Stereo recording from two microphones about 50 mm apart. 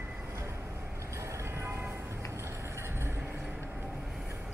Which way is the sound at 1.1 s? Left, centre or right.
Right.